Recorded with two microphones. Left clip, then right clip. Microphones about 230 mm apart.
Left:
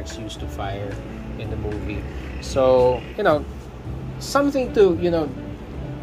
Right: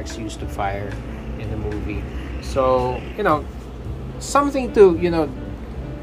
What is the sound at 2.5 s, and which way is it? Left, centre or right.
Speech, centre.